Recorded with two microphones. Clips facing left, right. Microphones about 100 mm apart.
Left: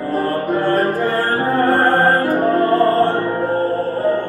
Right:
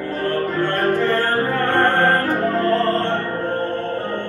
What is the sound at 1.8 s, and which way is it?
Music, 40° left (ahead or behind).